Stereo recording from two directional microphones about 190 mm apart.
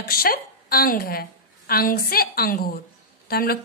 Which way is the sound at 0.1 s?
50° left (ahead or behind).